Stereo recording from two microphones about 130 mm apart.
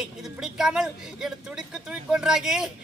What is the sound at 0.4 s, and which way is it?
A woman's voice, 5° right (ahead or behind).